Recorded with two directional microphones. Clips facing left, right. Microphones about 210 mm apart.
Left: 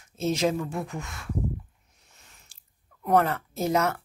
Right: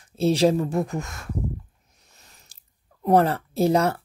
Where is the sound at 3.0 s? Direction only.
30° right (ahead or behind).